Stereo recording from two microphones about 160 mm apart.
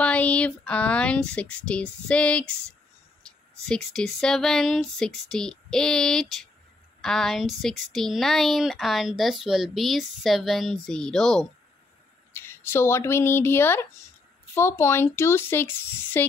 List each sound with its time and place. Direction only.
0.0 s speech: 10° left (ahead or behind)
12.3 s speech: 15° left (ahead or behind)